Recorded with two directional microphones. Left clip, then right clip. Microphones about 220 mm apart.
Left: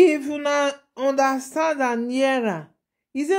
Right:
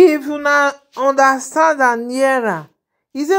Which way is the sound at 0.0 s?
15° right (ahead or behind).